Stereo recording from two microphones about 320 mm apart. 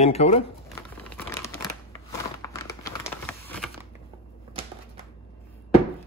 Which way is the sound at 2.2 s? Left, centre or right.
Centre.